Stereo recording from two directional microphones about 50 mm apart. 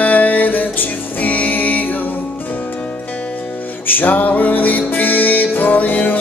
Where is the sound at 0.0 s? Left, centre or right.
Left.